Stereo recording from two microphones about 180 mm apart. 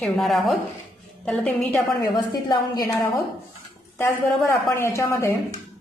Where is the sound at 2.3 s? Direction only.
25° left (ahead or behind).